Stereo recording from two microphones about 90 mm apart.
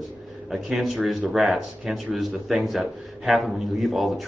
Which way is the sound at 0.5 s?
5° right (ahead or behind).